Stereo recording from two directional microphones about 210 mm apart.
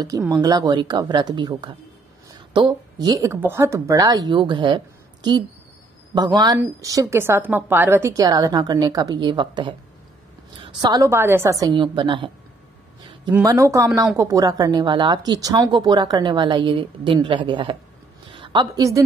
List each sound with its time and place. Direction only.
0.2 s a woman's voice: 15° right (ahead or behind)
11.6 s speech: 20° right (ahead or behind)
13.3 s a woman's voice: 15° right (ahead or behind)